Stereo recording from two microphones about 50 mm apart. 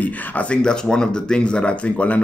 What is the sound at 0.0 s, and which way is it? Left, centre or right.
Speech, left.